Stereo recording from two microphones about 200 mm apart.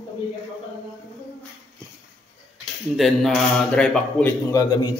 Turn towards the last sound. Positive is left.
turn(degrees=15)  # may be behind; listen again after turning